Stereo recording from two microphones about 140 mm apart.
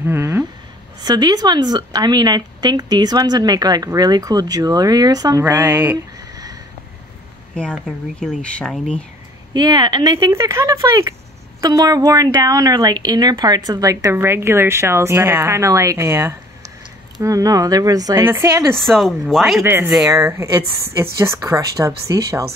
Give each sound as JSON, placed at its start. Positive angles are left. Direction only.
{"t": 0.0, "sound": "a sound", "side_deg": -15}
{"t": 1.0, "sound": "speech", "side_deg": -30}
{"t": 5.4, "sound": "speech", "side_deg": -15}
{"t": 6.1, "sound": "a sound", "side_deg": -25}
{"t": 7.5, "sound": "speech", "side_deg": 5}
{"t": 9.5, "sound": "speech", "side_deg": -30}
{"t": 18.9, "sound": "speech", "side_deg": 0}
{"t": 19.6, "sound": "speech", "side_deg": -15}